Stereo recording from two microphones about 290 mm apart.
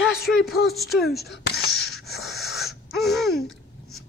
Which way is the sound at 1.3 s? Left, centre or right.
Left.